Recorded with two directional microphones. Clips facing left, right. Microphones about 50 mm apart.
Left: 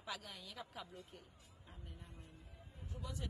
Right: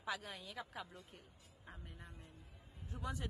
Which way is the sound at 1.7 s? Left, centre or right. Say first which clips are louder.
Right 3 dB; right.